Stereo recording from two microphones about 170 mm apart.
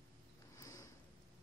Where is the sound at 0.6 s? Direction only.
20° left (ahead or behind).